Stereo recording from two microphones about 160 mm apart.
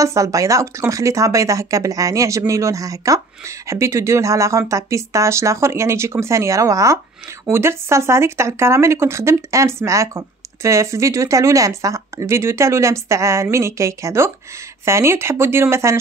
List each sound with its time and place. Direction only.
0.0 s speech: 20° right (ahead or behind)